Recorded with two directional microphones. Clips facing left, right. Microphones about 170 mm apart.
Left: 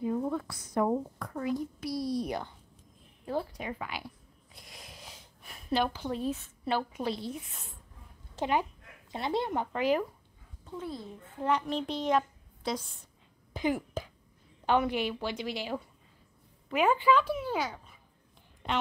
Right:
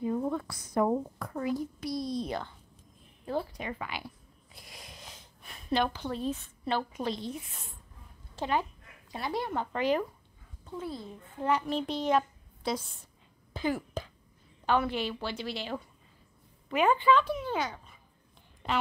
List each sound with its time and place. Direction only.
0.3 s a child's voice: centre (ahead or behind)
8.4 s speech: 15° left (ahead or behind)
9.7 s a child's voice: 5° left (ahead or behind)
13.5 s a woman's voice: 15° left (ahead or behind)